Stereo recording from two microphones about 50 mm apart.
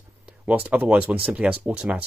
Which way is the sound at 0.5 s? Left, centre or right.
Right.